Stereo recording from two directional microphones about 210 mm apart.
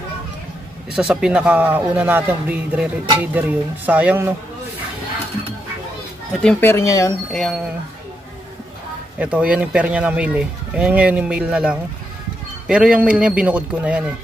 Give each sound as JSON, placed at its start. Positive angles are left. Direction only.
{"t": 0.9, "sound": "speech", "side_deg": -5}
{"t": 6.4, "sound": "speech", "side_deg": 10}
{"t": 7.3, "sound": "speech", "side_deg": 0}
{"t": 9.2, "sound": "speech", "side_deg": -5}